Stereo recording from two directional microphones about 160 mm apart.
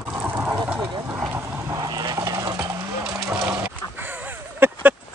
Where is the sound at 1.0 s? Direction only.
10° right (ahead or behind).